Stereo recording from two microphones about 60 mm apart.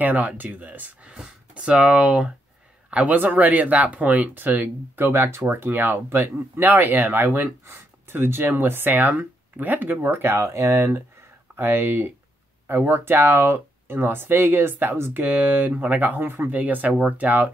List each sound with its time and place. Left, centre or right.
0.0 s speech: right
1.0 s a man's voice: centre; by 11.0 s right
11.5 s speech: right